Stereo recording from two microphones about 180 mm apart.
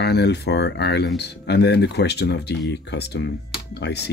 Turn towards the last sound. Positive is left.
turn(degrees=70)  # may be behind; listen again after turning